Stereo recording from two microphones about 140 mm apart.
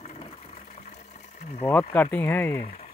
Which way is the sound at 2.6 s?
55° left (ahead or behind).